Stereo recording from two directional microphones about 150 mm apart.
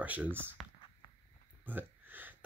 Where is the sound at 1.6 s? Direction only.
10° right (ahead or behind).